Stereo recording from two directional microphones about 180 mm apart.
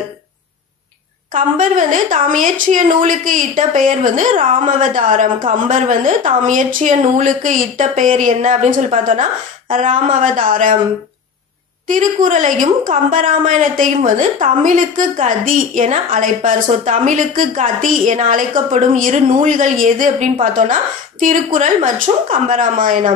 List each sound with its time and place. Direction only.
1.3 s a woman's voice: 45° right (ahead or behind)
11.9 s a woman's voice: 45° right (ahead or behind)